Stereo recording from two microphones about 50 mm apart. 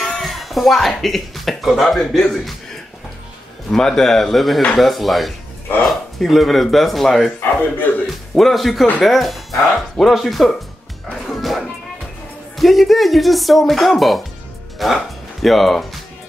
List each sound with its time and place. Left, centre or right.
0.0 s speech: centre
3.7 s speech: centre
7.9 s music: left
8.4 s speech: centre
11.3 s a sound: centre
12.5 s speech: centre